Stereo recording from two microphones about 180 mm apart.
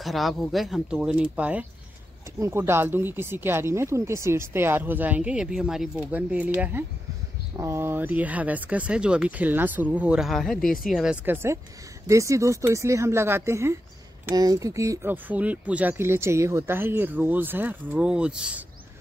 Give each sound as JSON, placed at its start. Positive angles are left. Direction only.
{"t": 0.0, "sound": "speech", "side_deg": 0}